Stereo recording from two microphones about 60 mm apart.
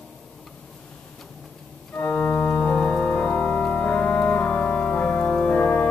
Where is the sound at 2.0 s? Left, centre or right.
Left.